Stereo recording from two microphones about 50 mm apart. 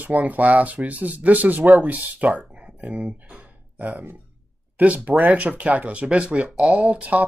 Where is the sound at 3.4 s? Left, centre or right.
Right.